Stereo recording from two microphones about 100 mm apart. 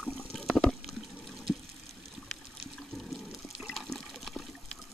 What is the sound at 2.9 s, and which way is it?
Toilet flush, centre (ahead or behind).